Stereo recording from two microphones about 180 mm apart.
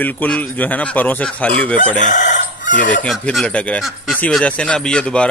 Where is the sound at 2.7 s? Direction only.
45° left (ahead or behind).